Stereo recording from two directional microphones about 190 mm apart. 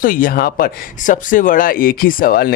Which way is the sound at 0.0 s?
45° left (ahead or behind).